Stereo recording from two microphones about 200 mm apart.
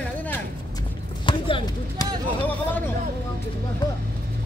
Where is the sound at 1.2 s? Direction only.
25° left (ahead or behind).